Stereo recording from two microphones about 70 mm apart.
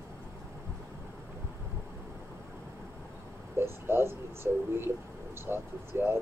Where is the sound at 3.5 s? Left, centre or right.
Right.